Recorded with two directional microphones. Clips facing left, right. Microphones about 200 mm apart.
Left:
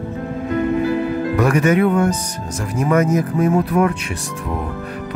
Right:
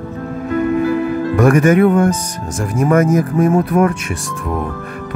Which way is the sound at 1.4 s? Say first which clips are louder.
Right 5 dB; 50° right (ahead or behind).